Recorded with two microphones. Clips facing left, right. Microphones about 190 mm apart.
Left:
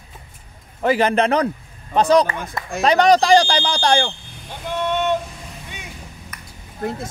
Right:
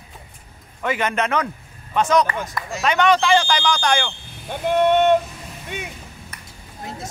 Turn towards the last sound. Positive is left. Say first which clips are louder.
# left 9 dB
turn(degrees=55)  # may be behind; listen again after turning